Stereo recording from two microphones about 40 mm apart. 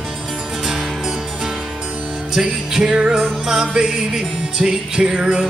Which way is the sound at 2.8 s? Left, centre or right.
Right.